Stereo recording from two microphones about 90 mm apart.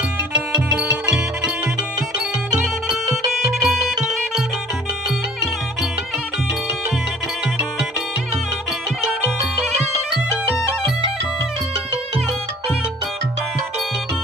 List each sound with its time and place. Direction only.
3.6 s music: centre (ahead or behind)